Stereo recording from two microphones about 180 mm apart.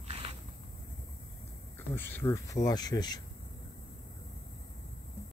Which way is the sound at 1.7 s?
10° left (ahead or behind).